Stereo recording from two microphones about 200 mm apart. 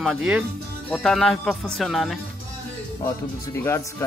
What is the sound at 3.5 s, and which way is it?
Speech, 15° left (ahead or behind).